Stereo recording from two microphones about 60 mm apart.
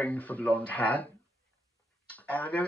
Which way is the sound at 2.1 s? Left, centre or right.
Left.